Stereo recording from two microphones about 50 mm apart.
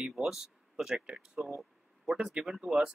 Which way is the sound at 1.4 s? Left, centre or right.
Centre.